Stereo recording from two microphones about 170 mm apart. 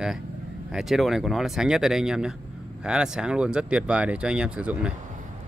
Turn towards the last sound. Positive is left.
turn(degrees=-5)  # may be behind; listen again after turning